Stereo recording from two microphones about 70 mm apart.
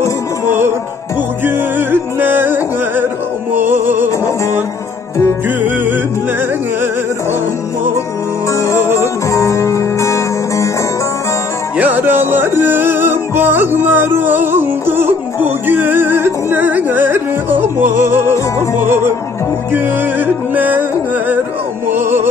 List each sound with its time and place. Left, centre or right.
0.5 s music: right
8.5 s music: left
11.7 s music: right
21.9 s music: right